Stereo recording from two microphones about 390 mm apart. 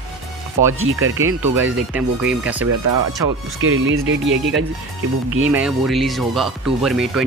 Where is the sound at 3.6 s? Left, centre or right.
Right.